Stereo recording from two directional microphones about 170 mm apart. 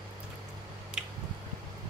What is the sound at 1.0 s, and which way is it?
Squish, 5° right (ahead or behind).